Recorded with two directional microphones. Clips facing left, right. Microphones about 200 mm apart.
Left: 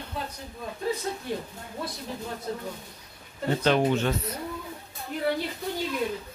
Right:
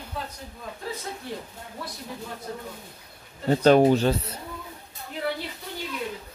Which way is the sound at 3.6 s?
40° right (ahead or behind).